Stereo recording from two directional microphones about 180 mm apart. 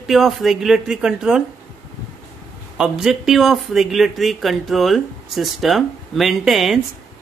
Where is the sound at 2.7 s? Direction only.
5° right (ahead or behind).